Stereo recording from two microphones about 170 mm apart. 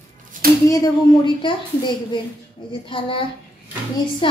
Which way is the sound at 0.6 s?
20° left (ahead or behind).